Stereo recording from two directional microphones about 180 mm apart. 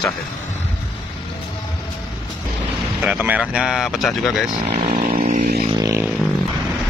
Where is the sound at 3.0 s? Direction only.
10° right (ahead or behind).